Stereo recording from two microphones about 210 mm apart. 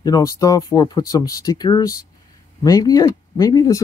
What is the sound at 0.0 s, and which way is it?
Speech, 15° left (ahead or behind).